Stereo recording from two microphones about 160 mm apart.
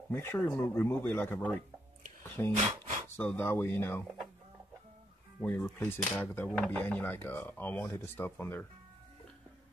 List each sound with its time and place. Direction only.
0.1 s speech: 15° left (ahead or behind)
5.4 s speech: 10° left (ahead or behind)